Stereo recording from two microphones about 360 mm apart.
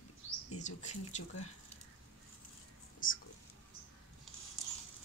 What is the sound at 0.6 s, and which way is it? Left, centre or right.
Speech, centre.